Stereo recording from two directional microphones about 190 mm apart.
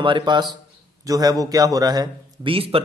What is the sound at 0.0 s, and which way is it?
A man's voice, 25° right (ahead or behind).